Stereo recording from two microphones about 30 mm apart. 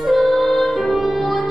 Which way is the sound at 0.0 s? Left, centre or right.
Centre.